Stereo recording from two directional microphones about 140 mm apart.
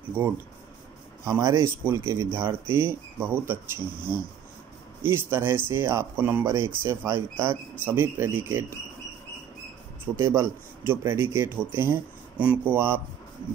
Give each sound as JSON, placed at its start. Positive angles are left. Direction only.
{"t": 0.2, "sound": "speech", "side_deg": -20}
{"t": 5.0, "sound": "speech", "side_deg": -15}
{"t": 10.1, "sound": "speech", "side_deg": -20}